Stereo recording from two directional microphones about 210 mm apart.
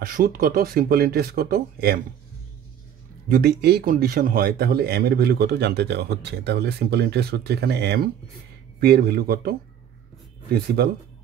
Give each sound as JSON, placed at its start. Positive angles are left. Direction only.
{"t": 0.0, "sound": "speech", "side_deg": -45}
{"t": 3.3, "sound": "speech", "side_deg": -45}
{"t": 10.8, "sound": "speech", "side_deg": -50}